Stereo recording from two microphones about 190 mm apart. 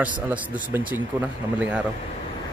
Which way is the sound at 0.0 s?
10° right (ahead or behind).